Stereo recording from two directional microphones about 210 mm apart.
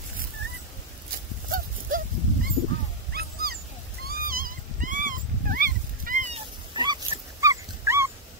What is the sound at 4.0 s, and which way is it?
Cat, 45° right (ahead or behind).